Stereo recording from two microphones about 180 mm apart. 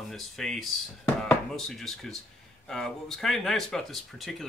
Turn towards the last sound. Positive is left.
turn(degrees=0)  # may be behind; listen again after turning